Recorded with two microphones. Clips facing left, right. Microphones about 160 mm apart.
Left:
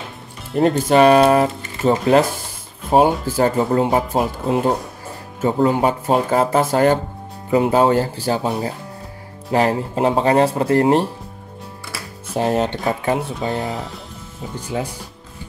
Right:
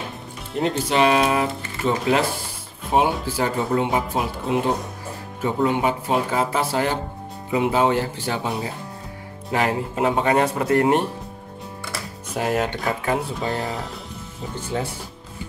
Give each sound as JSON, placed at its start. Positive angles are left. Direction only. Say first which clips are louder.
{"t": 0.6, "sound": "speech", "louder": "left 6 dB", "side_deg": 50}
{"t": 12.4, "sound": "speech", "louder": "left 4 dB", "side_deg": 25}
{"t": 13.4, "sound": "speech", "louder": "left 3 dB", "side_deg": 0}